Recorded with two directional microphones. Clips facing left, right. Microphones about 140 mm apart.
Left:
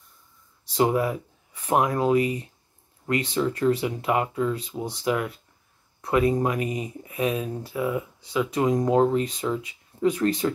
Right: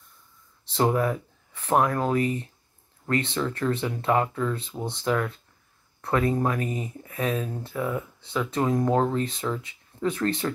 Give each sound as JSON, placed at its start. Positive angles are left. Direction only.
{"t": 0.7, "sound": "speech", "side_deg": 10}